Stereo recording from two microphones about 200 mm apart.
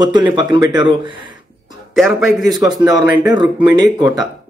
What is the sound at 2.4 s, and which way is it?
Speech, 20° right (ahead or behind).